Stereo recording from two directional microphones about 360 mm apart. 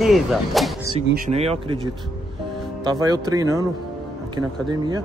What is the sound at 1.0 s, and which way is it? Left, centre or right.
Speech, right.